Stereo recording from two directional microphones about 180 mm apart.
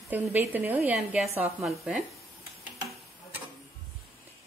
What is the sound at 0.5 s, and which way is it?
A woman's voice, 10° right (ahead or behind).